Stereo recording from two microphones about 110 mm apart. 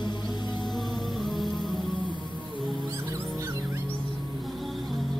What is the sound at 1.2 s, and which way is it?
Music, centre (ahead or behind).